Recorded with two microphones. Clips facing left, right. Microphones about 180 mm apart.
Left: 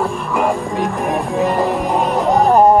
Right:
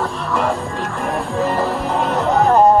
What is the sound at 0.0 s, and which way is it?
Music, 10° left (ahead or behind).